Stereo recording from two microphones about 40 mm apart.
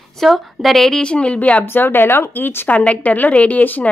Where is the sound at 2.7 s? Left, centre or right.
Left.